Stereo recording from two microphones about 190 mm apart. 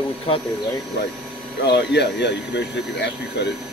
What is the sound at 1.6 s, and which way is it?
Speech, 60° left (ahead or behind).